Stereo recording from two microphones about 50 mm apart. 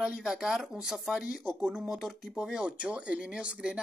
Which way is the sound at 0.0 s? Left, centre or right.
Centre.